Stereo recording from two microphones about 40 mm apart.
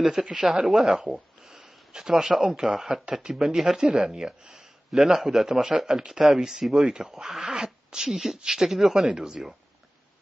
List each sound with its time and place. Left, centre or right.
0.0 s speech: centre
1.1 s a sound: centre
2.4 s speech: centre
3.1 s speech: right
3.3 s a man's voice: centre